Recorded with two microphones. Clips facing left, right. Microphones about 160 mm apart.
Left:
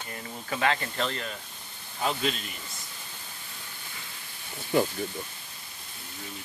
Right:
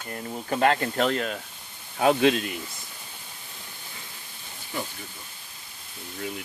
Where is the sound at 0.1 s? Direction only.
45° right (ahead or behind).